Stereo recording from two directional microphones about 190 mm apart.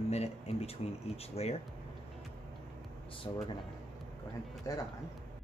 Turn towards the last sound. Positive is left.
turn(degrees=20)  # may be behind; listen again after turning